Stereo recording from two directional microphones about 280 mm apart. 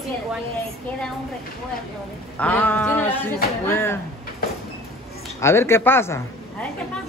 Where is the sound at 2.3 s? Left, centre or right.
Centre.